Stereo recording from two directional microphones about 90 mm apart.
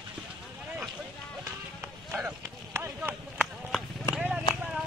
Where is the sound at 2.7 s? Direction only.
30° right (ahead or behind).